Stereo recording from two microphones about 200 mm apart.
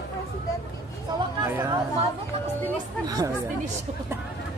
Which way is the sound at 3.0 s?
20° right (ahead or behind).